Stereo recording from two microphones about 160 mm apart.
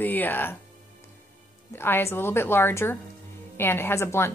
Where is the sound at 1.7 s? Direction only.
15° left (ahead or behind).